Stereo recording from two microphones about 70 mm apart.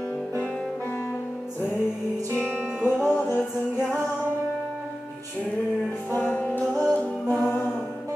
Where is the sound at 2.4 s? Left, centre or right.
Left.